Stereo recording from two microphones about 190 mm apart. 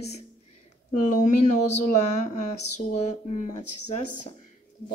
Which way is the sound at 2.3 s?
35° left (ahead or behind).